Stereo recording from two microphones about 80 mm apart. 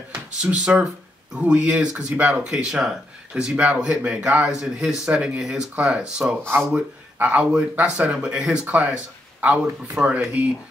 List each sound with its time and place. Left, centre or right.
0.1 s speech: centre